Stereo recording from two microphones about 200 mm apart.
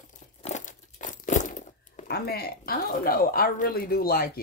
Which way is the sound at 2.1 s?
50° left (ahead or behind).